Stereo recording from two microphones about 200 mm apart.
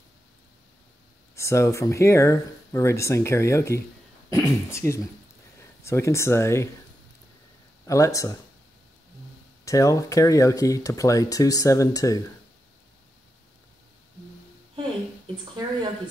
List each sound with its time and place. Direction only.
1.3 s speech: 15° left (ahead or behind)
7.8 s speech: 15° left (ahead or behind)
9.7 s speech: 15° left (ahead or behind)